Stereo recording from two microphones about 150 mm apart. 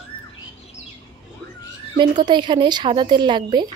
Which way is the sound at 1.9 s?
30° right (ahead or behind).